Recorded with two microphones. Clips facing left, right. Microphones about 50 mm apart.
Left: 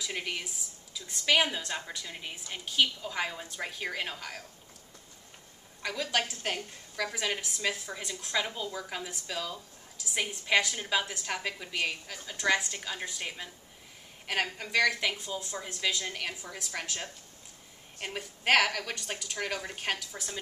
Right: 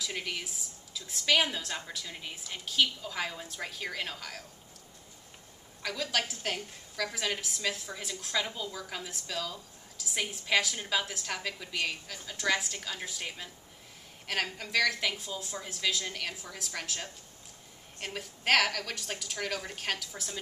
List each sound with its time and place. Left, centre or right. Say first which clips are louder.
0.0 s a woman's voice: left 1 dB; centre
5.8 s a woman's voice: left 1 dB; centre